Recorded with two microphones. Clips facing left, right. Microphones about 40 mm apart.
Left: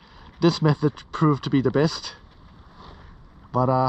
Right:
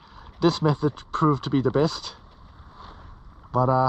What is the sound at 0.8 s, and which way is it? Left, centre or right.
Speech, left.